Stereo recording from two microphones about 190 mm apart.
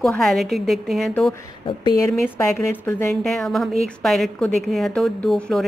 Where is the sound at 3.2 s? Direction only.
Centre (ahead or behind).